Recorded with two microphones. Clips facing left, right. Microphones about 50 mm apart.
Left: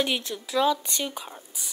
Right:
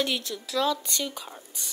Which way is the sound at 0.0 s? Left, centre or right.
Left.